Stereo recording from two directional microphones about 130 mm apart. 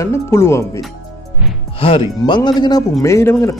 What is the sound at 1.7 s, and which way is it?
Speech, 45° left (ahead or behind).